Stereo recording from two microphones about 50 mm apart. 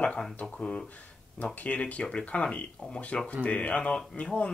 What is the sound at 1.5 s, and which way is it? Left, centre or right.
Speech, left.